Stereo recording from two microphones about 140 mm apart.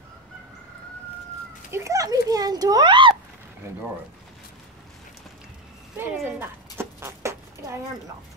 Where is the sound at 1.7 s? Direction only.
20° right (ahead or behind).